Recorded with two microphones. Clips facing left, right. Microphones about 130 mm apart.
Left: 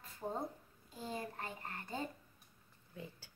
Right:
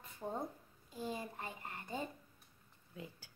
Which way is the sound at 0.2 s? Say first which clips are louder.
Left 1 dB; 10° left (ahead or behind).